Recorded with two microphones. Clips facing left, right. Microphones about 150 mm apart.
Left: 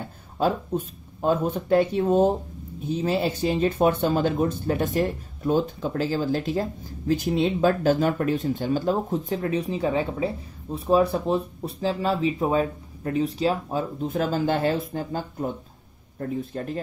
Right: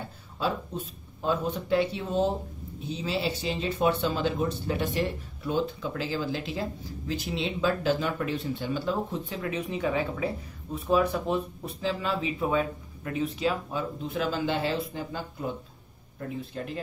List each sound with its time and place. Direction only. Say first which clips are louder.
0.4 s speech: left 6 dB; 50° left (ahead or behind)